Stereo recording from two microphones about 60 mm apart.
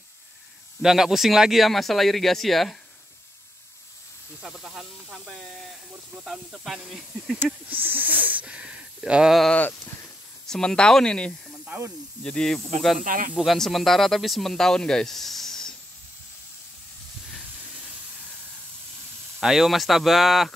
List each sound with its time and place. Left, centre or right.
0.8 s speech: centre
4.4 s speech: centre
5.3 s speech: centre
6.1 s speech: right
6.6 s speech: centre
7.7 s snake: right
8.5 s a sound: centre
10.5 s speech: centre
19.4 s speech: centre